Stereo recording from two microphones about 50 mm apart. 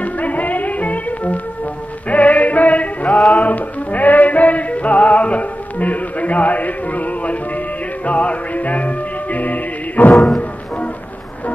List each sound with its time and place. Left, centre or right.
0.0 s music: left